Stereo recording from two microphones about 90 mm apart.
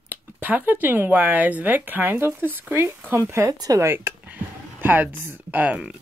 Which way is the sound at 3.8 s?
25° right (ahead or behind).